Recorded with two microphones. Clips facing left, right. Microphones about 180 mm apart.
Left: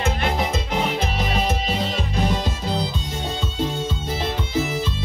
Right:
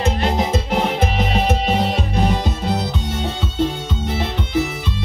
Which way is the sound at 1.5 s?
65° right (ahead or behind).